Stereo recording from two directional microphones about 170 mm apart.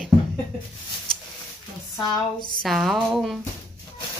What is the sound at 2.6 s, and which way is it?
Speech, centre (ahead or behind).